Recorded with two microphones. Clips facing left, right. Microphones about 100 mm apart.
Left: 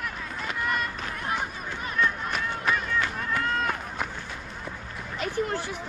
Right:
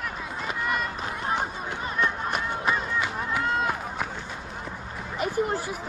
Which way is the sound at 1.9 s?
15° right (ahead or behind).